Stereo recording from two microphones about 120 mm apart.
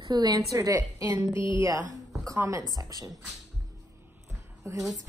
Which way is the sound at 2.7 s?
30° right (ahead or behind).